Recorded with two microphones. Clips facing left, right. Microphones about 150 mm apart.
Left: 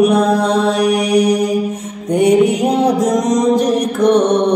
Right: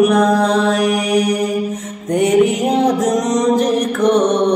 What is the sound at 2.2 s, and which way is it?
Music, 10° left (ahead or behind).